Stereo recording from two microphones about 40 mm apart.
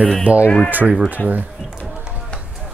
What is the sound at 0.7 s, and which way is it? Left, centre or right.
Speech, right.